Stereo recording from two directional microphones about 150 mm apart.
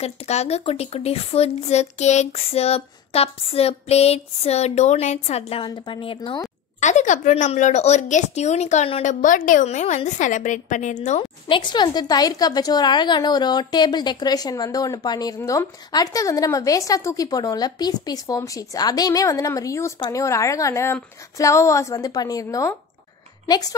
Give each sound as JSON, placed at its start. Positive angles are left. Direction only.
{"t": 0.0, "sound": "speech", "side_deg": 45}
{"t": 5.6, "sound": "speech", "side_deg": 30}
{"t": 6.8, "sound": "speech", "side_deg": 50}
{"t": 9.2, "sound": "a woman's voice", "side_deg": 60}
{"t": 11.4, "sound": "a woman's voice", "side_deg": 35}